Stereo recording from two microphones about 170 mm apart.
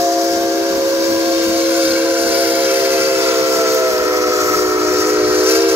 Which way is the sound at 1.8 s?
10° right (ahead or behind).